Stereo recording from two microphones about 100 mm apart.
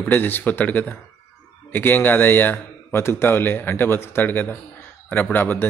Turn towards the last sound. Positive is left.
turn(degrees=20)  # may be behind; listen again after turning